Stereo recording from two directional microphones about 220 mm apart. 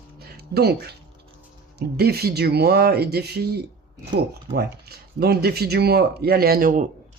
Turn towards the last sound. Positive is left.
turn(degrees=-40)  # may be behind; listen again after turning